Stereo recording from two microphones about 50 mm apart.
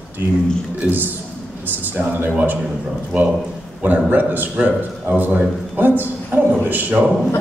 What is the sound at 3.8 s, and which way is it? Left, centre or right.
A man's voice, right.